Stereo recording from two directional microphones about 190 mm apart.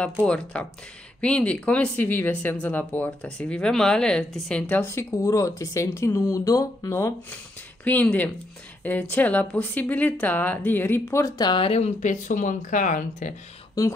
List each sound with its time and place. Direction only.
0.2 s speech: 5° left (ahead or behind); by 13.3 s 40° left (ahead or behind)
13.8 s speech: 20° left (ahead or behind)